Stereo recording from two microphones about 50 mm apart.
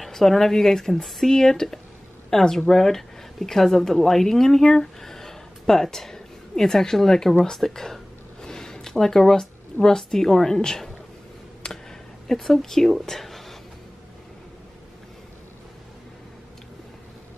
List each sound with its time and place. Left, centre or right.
0.0 s speech: centre
11.6 s a sound: centre
12.3 s speech: centre